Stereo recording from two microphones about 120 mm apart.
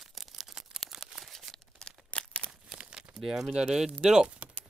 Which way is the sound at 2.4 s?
5° right (ahead or behind).